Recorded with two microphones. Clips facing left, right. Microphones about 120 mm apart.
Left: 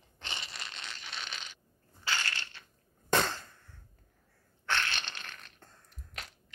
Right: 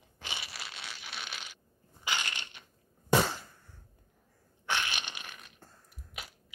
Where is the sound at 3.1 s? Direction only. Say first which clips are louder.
Right 2 dB; 10° right (ahead or behind).